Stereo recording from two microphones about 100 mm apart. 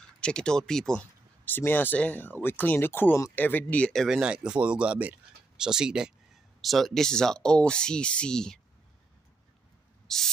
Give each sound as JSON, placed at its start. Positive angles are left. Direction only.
{"t": 0.2, "sound": "speech", "side_deg": 10}
{"t": 1.4, "sound": "speech", "side_deg": 20}
{"t": 4.2, "sound": "speech", "side_deg": -10}
{"t": 10.0, "sound": "spray", "side_deg": 5}